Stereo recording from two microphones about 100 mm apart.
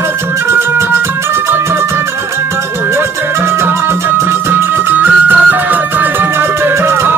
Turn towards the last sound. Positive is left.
turn(degrees=-25)  # may be behind; listen again after turning